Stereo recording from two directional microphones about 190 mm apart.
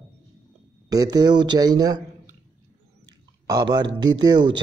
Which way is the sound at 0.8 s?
20° right (ahead or behind).